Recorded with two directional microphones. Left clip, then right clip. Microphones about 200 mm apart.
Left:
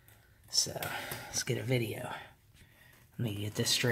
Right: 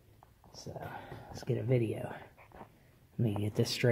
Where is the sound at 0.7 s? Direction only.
15° left (ahead or behind).